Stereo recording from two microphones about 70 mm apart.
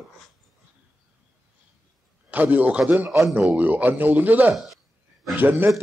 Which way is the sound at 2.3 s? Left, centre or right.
Right.